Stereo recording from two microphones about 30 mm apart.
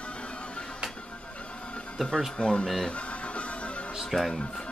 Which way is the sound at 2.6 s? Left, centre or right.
Centre.